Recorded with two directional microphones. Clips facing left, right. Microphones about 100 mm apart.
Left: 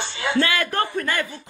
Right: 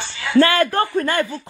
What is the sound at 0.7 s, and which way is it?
Speech, 20° right (ahead or behind).